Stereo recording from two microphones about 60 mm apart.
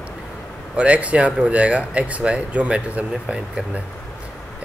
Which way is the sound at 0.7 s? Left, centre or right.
Right.